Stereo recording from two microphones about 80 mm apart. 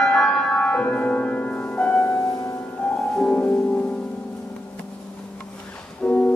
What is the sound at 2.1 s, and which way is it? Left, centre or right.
Music, left.